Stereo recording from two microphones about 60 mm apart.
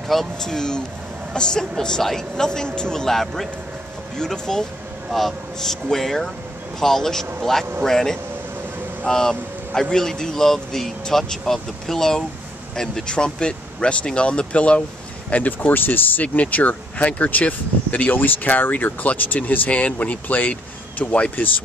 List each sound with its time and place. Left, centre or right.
0.1 s speech: centre; by 21.5 s left